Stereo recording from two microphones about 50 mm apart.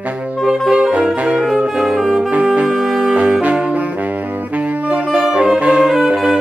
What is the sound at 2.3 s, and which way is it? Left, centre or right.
Saxophone, right.